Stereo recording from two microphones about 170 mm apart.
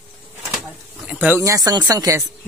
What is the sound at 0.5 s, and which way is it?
Speech, 5° right (ahead or behind).